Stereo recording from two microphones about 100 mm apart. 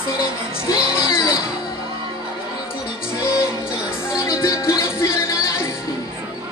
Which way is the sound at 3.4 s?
25° left (ahead or behind).